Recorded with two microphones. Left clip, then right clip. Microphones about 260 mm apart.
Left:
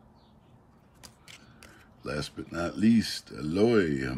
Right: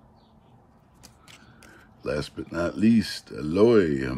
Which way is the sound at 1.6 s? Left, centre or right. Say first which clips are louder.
Right 7 dB; centre.